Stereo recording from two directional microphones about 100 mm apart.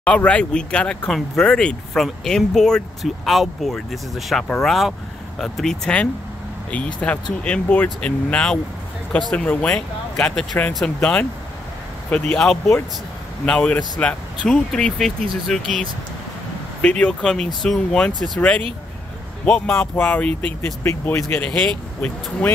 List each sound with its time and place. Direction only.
0.0 s speech: 15° left (ahead or behind)
16.8 s speech: 10° left (ahead or behind)
19.4 s speech: 10° left (ahead or behind)
21.5 s speech: 5° left (ahead or behind)